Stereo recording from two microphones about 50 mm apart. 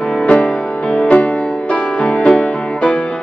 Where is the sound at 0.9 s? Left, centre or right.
Left.